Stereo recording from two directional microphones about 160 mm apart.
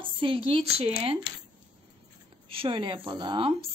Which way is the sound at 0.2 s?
35° right (ahead or behind).